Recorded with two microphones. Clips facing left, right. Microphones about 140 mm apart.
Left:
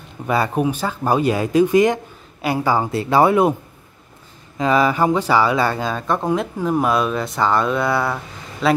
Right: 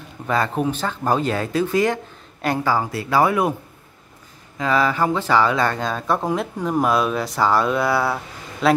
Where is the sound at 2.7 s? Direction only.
25° left (ahead or behind).